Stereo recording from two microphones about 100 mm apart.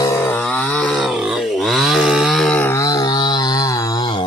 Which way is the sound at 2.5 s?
15° left (ahead or behind).